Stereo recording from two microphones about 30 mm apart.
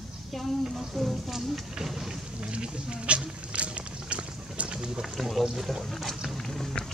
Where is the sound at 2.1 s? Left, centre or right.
Right.